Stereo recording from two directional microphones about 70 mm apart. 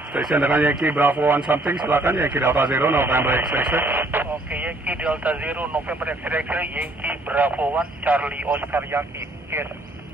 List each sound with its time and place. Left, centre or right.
0.3 s speech: right
8.7 s speech: right